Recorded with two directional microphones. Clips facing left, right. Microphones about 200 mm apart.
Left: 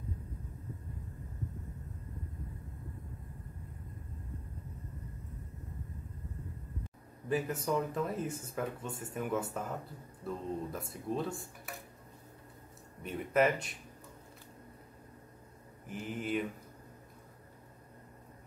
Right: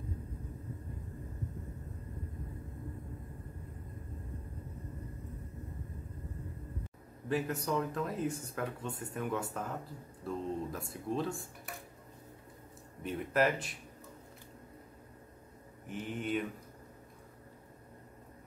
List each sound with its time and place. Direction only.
7.2 s speech: centre (ahead or behind)
13.0 s speech: centre (ahead or behind)
15.9 s speech: centre (ahead or behind)